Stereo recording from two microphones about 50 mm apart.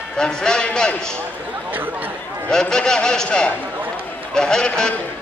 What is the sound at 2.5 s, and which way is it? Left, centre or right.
A man's voice, centre.